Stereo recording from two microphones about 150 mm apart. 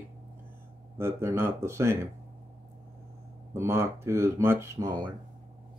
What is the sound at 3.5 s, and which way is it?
Speech, 20° right (ahead or behind).